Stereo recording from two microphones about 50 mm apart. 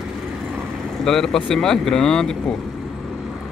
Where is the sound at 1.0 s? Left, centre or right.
Centre.